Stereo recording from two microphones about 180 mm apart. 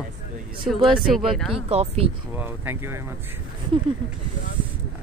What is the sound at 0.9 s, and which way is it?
Speech, centre (ahead or behind).